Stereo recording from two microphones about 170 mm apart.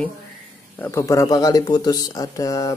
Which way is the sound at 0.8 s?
15° left (ahead or behind).